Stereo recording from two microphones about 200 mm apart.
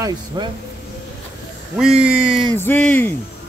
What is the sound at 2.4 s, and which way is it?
Speech, 10° left (ahead or behind).